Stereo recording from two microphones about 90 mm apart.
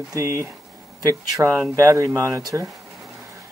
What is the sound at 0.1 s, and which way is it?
Speech, 35° right (ahead or behind).